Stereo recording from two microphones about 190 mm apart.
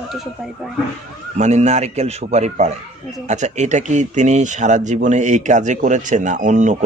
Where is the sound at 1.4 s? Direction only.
35° right (ahead or behind).